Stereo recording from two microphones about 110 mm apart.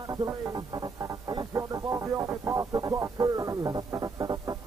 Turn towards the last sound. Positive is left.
turn(degrees=-35)  # may be behind; listen again after turning